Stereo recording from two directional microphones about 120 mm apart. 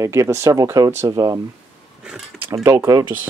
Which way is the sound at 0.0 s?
25° right (ahead or behind).